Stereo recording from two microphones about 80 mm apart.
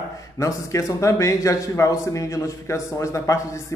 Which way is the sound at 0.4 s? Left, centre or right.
Left.